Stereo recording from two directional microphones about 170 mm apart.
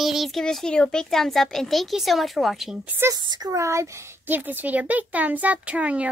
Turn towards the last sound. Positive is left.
turn(degrees=-10)  # may be behind; listen again after turning